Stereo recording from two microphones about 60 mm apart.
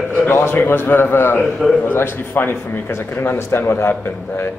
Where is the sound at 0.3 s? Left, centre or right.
Left.